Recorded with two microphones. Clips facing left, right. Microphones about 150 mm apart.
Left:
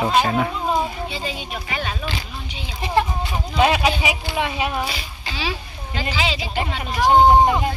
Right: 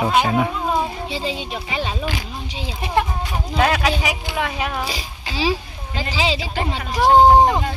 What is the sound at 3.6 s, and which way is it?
Speech, 5° left (ahead or behind).